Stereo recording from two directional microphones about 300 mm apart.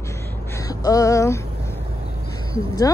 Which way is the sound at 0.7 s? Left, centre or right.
Centre.